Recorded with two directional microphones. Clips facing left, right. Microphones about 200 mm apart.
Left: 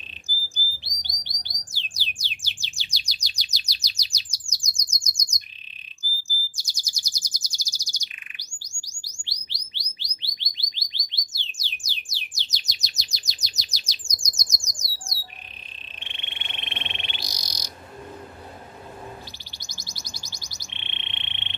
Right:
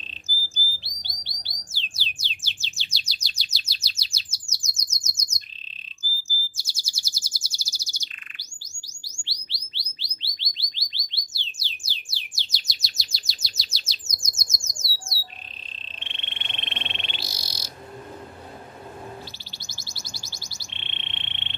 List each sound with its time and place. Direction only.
0.8 s bird: 15° left (ahead or behind)
6.2 s chirp: 15° left (ahead or behind)
9.0 s bird: 15° left (ahead or behind)
16.0 s frog: 15° left (ahead or behind)
19.6 s bird: 15° left (ahead or behind)